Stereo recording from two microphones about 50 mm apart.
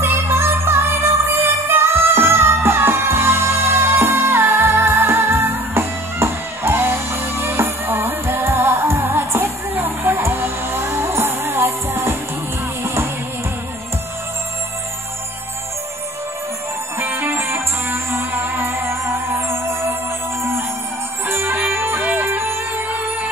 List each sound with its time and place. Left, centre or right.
0.0 s music: right
17.0 s music: right
21.3 s music: right
22.0 s music: right
22.8 s music: right